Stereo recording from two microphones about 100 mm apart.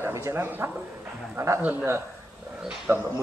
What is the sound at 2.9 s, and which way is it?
Speech, 25° right (ahead or behind).